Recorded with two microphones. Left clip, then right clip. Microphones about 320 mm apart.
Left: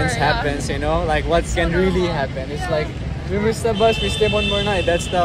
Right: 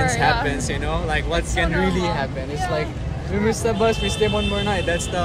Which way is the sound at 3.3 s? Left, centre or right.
Centre.